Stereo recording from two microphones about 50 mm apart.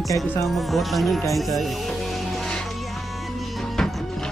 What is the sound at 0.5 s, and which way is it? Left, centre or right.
Speech, centre.